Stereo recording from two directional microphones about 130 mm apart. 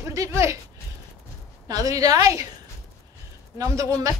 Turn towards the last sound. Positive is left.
turn(degrees=-25)  # may be behind; listen again after turning